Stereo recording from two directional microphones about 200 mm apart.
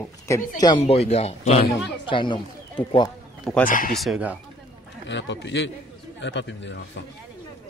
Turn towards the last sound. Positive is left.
turn(degrees=65)  # may be behind; listen again after turning